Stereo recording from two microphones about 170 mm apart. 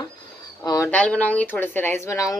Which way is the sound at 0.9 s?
10° left (ahead or behind).